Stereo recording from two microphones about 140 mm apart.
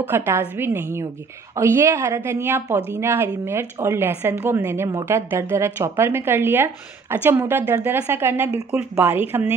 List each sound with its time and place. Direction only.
0.0 s speech: 15° right (ahead or behind)